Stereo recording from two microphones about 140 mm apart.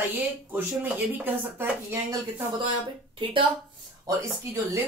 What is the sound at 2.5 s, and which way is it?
Speech, 35° right (ahead or behind).